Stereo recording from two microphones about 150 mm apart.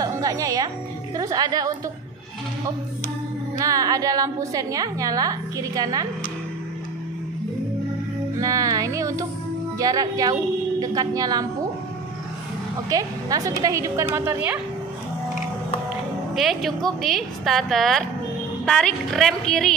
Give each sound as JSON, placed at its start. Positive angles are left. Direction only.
{"t": 0.0, "sound": "music", "side_deg": -20}
{"t": 1.1, "sound": "a woman's voice", "side_deg": -25}
{"t": 3.5, "sound": "a woman's voice", "side_deg": -25}
{"t": 8.4, "sound": "a woman's voice", "side_deg": -20}
{"t": 12.9, "sound": "a woman's voice", "side_deg": -25}
{"t": 16.3, "sound": "a woman's voice", "side_deg": 0}